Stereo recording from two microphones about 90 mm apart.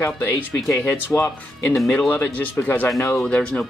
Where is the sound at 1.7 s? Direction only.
Centre (ahead or behind).